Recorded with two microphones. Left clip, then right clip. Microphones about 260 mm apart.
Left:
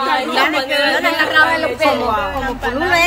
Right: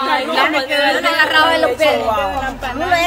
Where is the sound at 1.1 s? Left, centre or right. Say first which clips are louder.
Right 1 dB; right.